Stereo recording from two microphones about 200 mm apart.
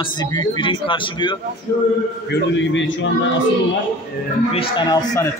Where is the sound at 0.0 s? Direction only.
20° left (ahead or behind).